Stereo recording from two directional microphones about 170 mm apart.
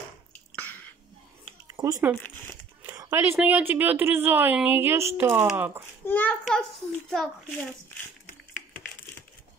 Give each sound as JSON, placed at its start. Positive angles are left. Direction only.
{"t": 1.7, "sound": "a woman's voice", "side_deg": -20}
{"t": 6.0, "sound": "a child's voice", "side_deg": 10}